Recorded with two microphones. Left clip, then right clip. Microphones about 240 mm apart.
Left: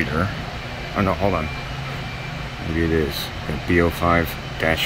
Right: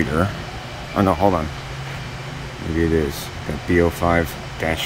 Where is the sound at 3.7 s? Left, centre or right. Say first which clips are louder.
Right 1 dB; centre.